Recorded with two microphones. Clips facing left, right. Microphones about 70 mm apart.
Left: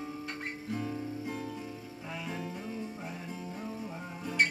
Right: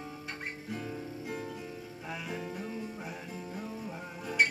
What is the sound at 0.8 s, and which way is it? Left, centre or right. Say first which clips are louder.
Guitar: left 3 dB; centre.